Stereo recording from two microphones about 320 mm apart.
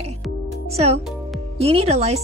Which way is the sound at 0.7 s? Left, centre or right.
Centre.